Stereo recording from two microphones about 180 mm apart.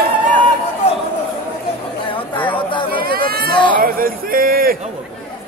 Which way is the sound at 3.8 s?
55° right (ahead or behind).